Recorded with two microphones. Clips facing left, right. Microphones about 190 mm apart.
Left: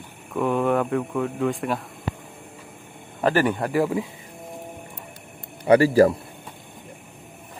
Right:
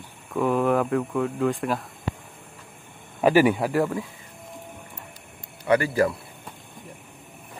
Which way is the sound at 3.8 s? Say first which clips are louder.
Left 3 dB; 15° left (ahead or behind).